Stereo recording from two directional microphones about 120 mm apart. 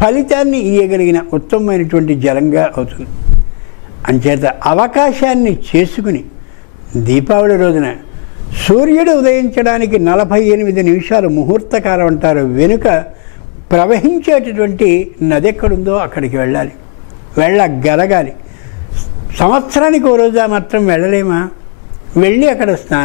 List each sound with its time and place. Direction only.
0.0 s a man's voice: 15° left (ahead or behind)
4.0 s a man's voice: 10° left (ahead or behind)
7.2 s a man's voice: 15° left (ahead or behind)
19.4 s a man's voice: 10° left (ahead or behind)